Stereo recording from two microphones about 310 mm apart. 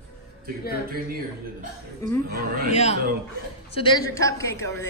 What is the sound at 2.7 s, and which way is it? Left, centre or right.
A man's voice, left.